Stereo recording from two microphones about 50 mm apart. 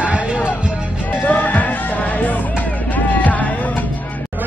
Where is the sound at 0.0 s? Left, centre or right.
Right.